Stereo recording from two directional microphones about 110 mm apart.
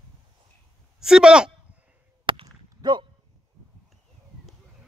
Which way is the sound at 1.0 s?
5° right (ahead or behind).